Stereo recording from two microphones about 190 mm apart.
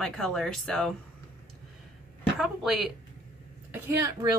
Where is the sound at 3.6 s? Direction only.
10° right (ahead or behind).